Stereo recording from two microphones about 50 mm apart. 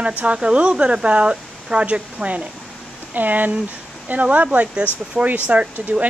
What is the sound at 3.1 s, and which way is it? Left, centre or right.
Speech, right.